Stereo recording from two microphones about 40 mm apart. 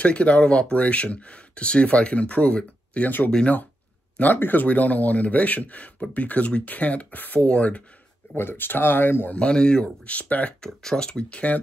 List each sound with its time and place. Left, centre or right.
0.0 s speech: left
4.4 s speech: left
4.6 s speech: left
7.3 s speech: left
8.4 s speech: left
9.3 s speech: left
10.6 s speech: centre; by 11.6 s left